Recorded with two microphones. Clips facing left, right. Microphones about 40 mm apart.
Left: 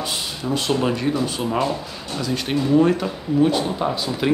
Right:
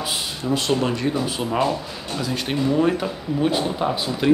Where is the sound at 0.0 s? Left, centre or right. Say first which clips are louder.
Even; centre.